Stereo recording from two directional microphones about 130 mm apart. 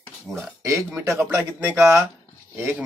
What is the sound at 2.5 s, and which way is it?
Speech, 15° right (ahead or behind).